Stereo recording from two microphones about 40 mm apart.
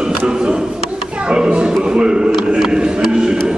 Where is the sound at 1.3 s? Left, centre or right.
Right.